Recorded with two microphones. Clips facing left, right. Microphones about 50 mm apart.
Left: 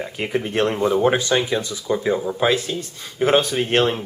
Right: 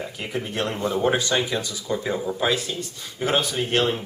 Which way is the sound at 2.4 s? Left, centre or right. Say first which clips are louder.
Left 3 dB; left.